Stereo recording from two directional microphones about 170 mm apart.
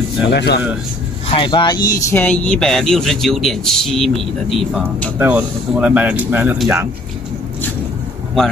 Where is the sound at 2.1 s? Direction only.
10° left (ahead or behind).